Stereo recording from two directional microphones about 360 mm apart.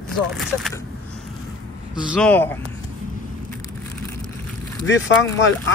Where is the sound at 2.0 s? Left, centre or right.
Centre.